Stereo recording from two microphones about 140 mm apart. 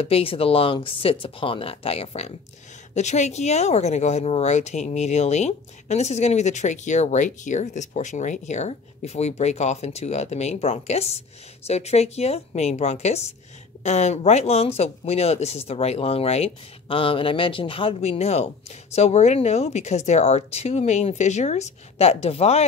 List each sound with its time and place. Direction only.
0.0 s speech: 45° left (ahead or behind)